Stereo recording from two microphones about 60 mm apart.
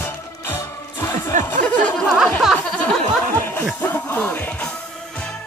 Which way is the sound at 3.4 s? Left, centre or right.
Left.